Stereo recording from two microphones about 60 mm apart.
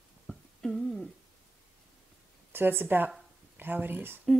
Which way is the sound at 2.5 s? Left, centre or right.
Right.